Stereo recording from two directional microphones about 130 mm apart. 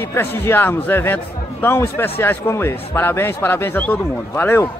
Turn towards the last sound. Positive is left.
turn(degrees=15)  # may be behind; listen again after turning